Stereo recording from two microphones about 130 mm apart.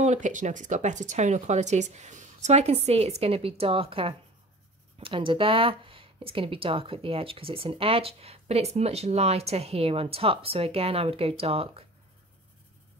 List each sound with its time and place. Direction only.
0.0 s speech: 70° right (ahead or behind); by 11.8 s 45° right (ahead or behind)